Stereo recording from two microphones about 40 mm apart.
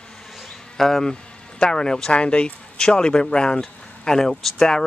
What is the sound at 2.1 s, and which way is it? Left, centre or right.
Speech, left.